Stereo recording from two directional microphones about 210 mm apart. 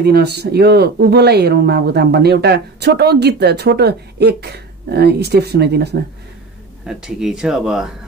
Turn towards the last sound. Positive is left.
turn(degrees=0)  # may be behind; listen again after turning